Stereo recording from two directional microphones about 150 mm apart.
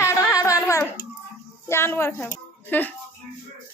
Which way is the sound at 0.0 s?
20° left (ahead or behind).